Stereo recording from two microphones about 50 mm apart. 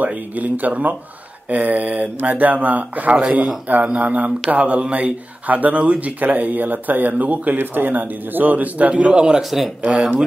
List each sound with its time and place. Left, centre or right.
0.0 s speech: right
9.4 s speech: centre
9.8 s speech: centre